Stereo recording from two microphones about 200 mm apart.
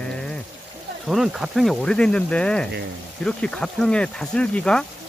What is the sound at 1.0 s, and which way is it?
Speech, centre (ahead or behind).